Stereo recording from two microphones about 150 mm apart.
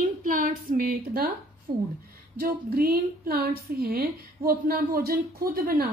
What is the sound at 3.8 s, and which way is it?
A woman's voice, 90° right.